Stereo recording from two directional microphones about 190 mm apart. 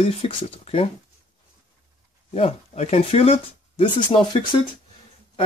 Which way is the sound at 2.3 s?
35° left (ahead or behind).